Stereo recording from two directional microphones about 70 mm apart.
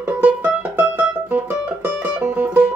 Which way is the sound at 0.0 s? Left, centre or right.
Right.